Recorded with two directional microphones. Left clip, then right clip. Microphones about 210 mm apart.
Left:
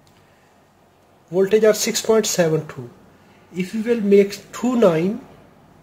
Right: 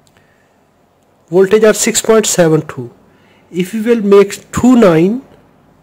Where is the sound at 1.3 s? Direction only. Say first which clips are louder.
Right 7 dB; 55° right (ahead or behind).